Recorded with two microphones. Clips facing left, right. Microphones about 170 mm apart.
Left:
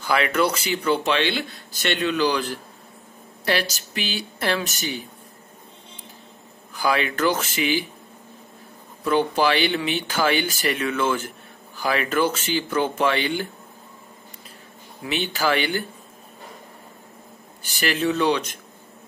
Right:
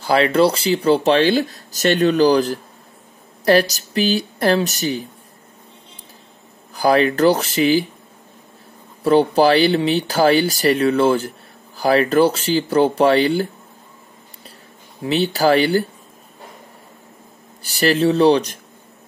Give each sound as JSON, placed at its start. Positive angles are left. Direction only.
{"t": 0.0, "sound": "speech", "side_deg": -30}
{"t": 6.7, "sound": "speech", "side_deg": -40}
{"t": 9.0, "sound": "speech", "side_deg": -35}
{"t": 15.0, "sound": "speech", "side_deg": -35}
{"t": 17.6, "sound": "speech", "side_deg": -35}